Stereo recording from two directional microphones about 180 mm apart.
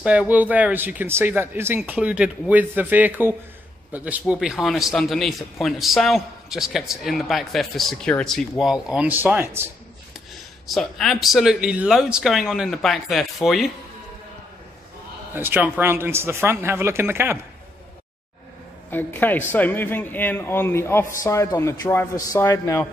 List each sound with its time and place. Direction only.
0.0 s a man's voice: 5° right (ahead or behind)
10.7 s a man's voice: centre (ahead or behind)
15.3 s speech: 10° right (ahead or behind)
18.9 s a man's voice: 10° left (ahead or behind)